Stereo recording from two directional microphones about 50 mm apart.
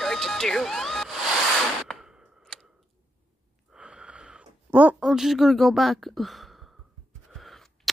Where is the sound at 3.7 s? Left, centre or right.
Centre.